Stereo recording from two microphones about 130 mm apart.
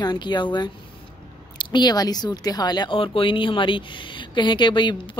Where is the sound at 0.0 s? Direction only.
35° left (ahead or behind).